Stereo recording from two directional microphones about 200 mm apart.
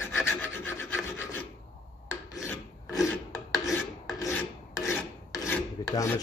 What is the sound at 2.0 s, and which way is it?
Filing, 15° left (ahead or behind).